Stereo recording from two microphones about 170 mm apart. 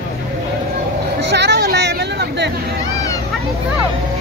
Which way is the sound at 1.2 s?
85° right.